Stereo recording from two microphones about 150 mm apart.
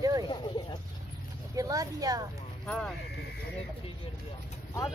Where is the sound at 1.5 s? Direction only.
25° right (ahead or behind).